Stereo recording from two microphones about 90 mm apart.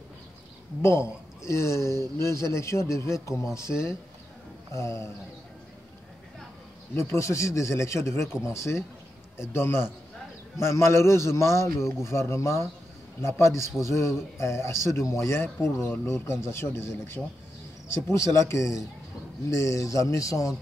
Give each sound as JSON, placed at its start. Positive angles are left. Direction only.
{"t": 0.8, "sound": "a man's voice", "side_deg": 30}
{"t": 7.0, "sound": "a man's voice", "side_deg": 30}